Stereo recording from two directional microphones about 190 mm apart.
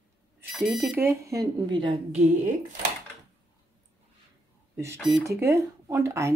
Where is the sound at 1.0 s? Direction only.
15° right (ahead or behind).